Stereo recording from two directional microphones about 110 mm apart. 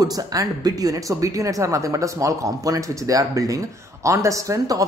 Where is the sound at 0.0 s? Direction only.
35° right (ahead or behind).